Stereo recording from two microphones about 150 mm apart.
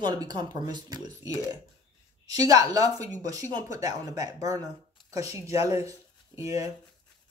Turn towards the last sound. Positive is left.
turn(degrees=-20)  # may be behind; listen again after turning